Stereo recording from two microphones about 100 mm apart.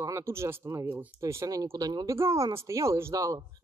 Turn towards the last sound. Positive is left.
turn(degrees=-35)  # may be behind; listen again after turning